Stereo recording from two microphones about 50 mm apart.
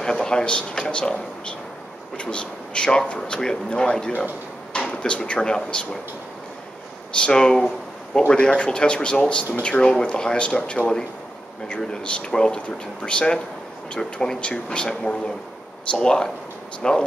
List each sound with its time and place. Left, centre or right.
0.0 s speech: centre
7.2 s speech: centre
11.8 s speech: centre